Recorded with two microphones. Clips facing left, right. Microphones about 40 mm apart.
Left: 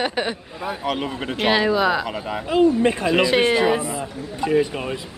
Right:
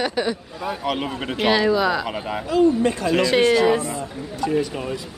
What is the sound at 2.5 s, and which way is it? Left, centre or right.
Speech, left.